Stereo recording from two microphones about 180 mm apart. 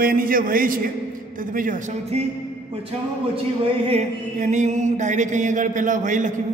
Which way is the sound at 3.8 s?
35° right (ahead or behind).